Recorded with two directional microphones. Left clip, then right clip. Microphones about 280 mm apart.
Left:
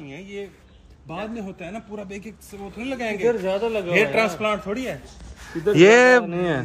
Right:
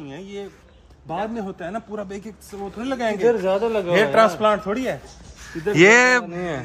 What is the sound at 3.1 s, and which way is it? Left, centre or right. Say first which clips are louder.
Speech: right 3 dB; right.